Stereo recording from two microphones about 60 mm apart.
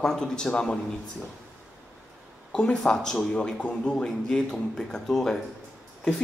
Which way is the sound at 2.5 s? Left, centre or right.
Centre.